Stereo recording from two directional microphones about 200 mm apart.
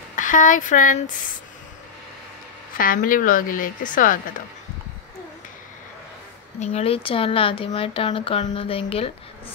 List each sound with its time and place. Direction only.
0.1 s speech: 40° left (ahead or behind)
2.8 s speech: 45° left (ahead or behind)
6.6 s speech: 30° left (ahead or behind)